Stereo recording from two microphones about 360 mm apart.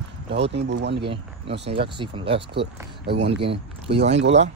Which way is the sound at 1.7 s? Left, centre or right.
Centre.